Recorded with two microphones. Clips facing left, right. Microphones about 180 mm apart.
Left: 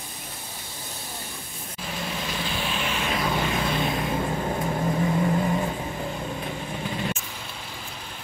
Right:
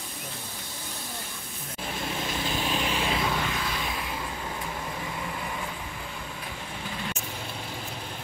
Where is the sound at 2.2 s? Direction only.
45° right (ahead or behind).